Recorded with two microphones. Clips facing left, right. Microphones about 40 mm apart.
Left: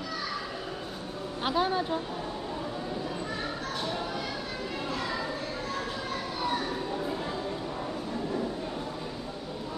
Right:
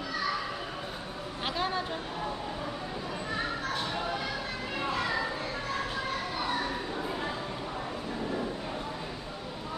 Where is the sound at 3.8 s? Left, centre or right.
Centre.